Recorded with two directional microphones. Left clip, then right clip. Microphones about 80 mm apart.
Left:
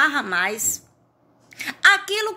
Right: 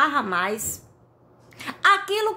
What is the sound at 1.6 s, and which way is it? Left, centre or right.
Speech, right.